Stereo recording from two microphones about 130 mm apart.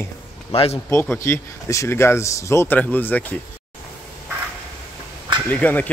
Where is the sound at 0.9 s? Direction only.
20° left (ahead or behind).